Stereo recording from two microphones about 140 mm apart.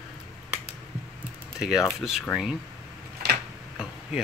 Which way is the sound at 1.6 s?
5° right (ahead or behind).